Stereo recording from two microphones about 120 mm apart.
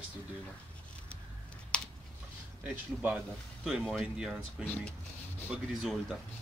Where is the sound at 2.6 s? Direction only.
15° right (ahead or behind).